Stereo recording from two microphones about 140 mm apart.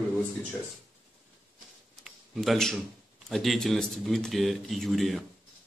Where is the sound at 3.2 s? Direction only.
Centre (ahead or behind).